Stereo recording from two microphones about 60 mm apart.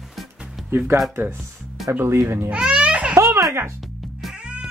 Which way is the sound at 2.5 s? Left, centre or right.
Centre.